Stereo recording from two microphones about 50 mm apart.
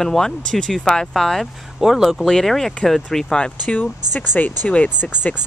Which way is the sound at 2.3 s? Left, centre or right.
Centre.